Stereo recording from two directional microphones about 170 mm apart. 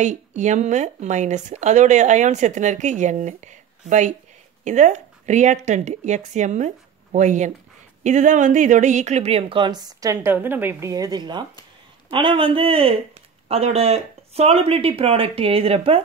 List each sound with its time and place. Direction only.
0.0 s speech: 45° right (ahead or behind)